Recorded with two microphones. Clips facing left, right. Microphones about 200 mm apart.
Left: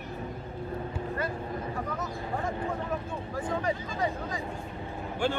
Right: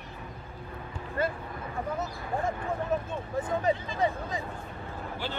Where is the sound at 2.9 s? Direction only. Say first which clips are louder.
Right 3 dB; 25° right (ahead or behind).